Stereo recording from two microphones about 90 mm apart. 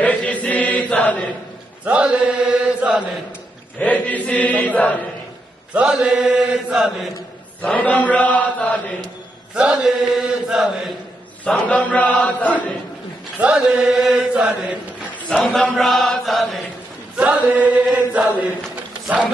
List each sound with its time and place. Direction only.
0.0 s chant: 15° left (ahead or behind)
1.9 s chant: 10° right (ahead or behind)
3.8 s chant: 15° left (ahead or behind)
5.7 s chant: 15° right (ahead or behind)
7.6 s chant: 15° left (ahead or behind)
9.6 s chant: 10° right (ahead or behind)
11.4 s chant: 15° left (ahead or behind)
13.4 s chant: 10° right (ahead or behind)
15.3 s chant: centre (ahead or behind)
17.2 s chant: 15° right (ahead or behind)